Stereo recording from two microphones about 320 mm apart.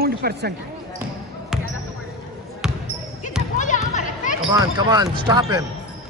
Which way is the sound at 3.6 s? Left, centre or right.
Left.